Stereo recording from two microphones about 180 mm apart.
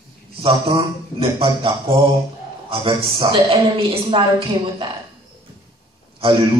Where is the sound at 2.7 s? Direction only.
30° right (ahead or behind).